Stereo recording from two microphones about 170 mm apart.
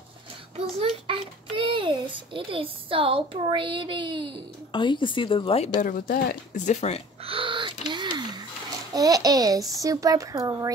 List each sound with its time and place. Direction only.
0.7 s a child's voice: 30° right (ahead or behind)
4.7 s speech: 30° left (ahead or behind)
5.8 s speech: 55° left (ahead or behind)
7.2 s gasp: 30° right (ahead or behind)
8.9 s a child's voice: 20° right (ahead or behind)